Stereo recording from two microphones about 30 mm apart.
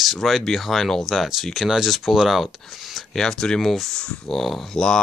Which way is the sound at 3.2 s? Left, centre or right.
Left.